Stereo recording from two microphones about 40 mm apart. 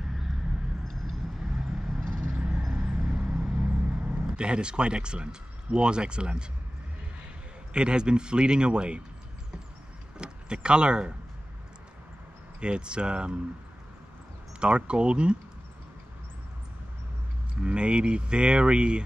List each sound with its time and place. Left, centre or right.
1.4 s vehicle: centre
2.3 s music: right
2.7 s a sound: centre
3.2 s vehicle: right
7.7 s speech: right
10.1 s speech: right
12.5 s speech: right
14.9 s speech: right
17.6 s speech: right